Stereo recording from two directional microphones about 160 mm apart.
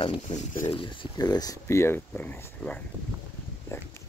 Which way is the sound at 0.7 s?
30° left (ahead or behind).